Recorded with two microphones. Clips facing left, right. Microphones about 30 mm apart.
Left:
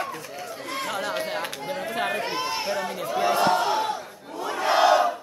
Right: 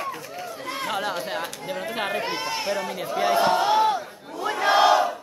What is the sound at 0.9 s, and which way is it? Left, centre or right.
Chatter, centre.